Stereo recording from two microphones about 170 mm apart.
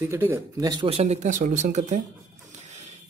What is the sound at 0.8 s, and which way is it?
Speech, 40° right (ahead or behind).